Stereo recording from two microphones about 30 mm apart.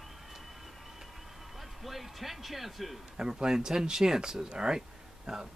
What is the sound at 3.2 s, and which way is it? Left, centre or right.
Speech, right.